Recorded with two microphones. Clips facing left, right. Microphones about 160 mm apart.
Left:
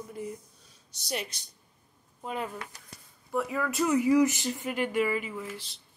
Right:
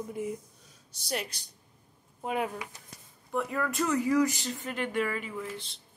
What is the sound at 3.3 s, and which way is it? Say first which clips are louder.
Speech: left 1 dB; 5° left (ahead or behind).